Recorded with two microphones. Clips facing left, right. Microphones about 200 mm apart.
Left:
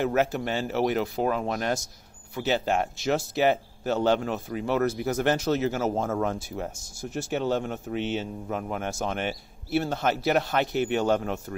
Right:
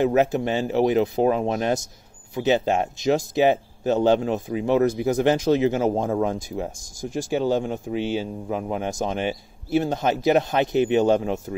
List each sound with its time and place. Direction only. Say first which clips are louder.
0.0 s speech: right 5 dB; 15° right (ahead or behind)